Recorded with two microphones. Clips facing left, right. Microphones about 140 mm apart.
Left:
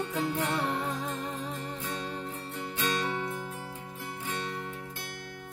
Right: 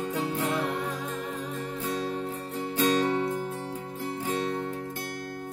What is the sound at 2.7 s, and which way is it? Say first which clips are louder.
Music: right 8 dB; 40° right (ahead or behind).